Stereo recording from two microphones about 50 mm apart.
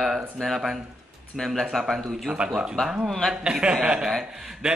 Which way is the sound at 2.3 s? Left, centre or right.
Centre.